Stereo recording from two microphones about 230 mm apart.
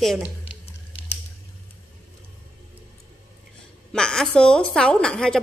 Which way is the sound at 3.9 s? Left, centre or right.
Centre.